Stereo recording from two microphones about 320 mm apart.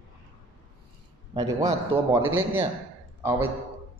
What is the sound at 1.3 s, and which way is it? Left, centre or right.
A man's voice, centre.